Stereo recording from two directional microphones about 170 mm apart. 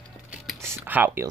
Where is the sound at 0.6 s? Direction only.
15° right (ahead or behind).